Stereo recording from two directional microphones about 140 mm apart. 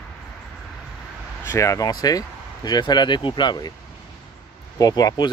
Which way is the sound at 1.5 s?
20° left (ahead or behind).